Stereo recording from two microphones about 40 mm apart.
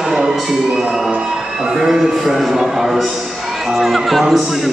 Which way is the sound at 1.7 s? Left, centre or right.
Centre.